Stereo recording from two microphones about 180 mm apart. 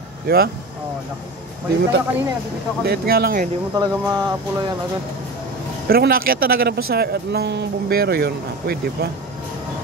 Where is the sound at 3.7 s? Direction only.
20° right (ahead or behind).